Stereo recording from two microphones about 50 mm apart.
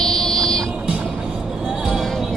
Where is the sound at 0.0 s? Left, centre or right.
Centre.